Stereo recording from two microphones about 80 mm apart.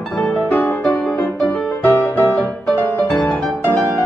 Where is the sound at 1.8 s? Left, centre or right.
Left.